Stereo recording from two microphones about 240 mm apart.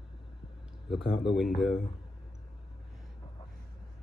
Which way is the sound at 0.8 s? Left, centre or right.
Centre.